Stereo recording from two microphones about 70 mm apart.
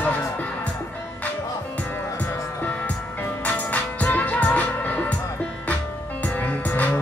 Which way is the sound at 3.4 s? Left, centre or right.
Left.